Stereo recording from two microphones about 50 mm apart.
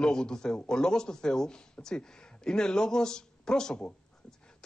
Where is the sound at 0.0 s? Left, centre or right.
Centre.